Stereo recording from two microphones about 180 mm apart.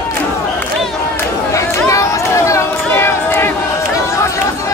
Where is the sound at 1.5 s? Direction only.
15° left (ahead or behind).